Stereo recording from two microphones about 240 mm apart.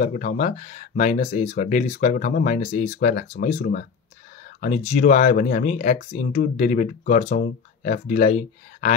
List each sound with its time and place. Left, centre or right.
0.0 s speech: left